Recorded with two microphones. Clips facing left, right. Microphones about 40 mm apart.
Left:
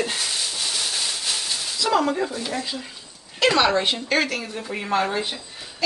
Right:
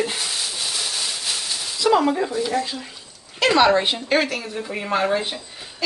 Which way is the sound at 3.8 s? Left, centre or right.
Centre.